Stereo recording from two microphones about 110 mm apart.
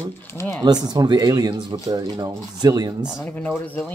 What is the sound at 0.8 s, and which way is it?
Speech, 35° right (ahead or behind).